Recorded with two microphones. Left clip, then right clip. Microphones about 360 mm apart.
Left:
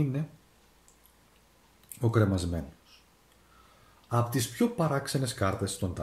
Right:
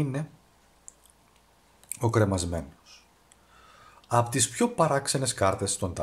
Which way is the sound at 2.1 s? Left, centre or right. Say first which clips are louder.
Right 3 dB; centre.